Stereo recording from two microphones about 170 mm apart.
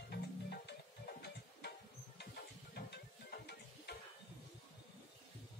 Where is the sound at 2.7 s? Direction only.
70° left (ahead or behind).